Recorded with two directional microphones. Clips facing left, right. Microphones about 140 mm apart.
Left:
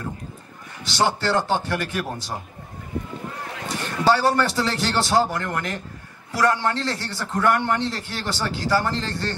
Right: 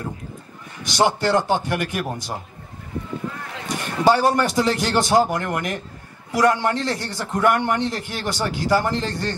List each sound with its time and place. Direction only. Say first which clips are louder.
0.8 s a man's voice: right 3 dB; 15° right (ahead or behind)
3.6 s a man's voice: right 2 dB; 15° right (ahead or behind)